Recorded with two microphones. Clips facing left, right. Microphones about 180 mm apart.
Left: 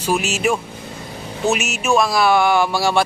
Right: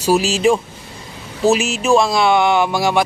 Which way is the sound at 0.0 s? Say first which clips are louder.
Right 5 dB; 35° right (ahead or behind).